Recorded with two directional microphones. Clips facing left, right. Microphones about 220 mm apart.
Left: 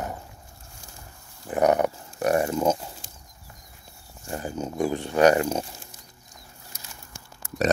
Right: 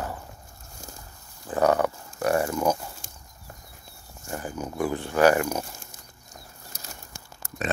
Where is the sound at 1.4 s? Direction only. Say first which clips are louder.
Left 1 dB; 20° left (ahead or behind).